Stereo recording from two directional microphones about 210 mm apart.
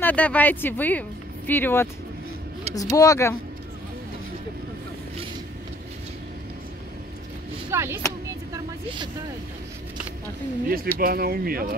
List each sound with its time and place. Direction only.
0.0 s speech: 5° left (ahead or behind)
7.7 s a sound: 10° right (ahead or behind)
10.7 s speech: 45° right (ahead or behind)